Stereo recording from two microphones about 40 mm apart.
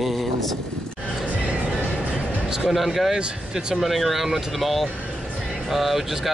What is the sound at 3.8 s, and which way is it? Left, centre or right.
Speech, centre.